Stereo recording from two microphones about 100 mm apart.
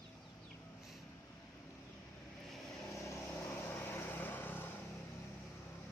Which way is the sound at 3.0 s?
30° left (ahead or behind).